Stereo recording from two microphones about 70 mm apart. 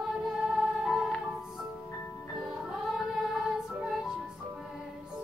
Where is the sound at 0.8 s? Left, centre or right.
Centre.